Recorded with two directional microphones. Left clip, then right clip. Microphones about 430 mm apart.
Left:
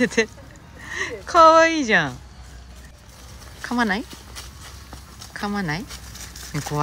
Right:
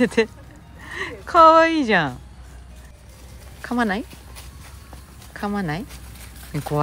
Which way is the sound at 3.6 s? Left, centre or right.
Centre.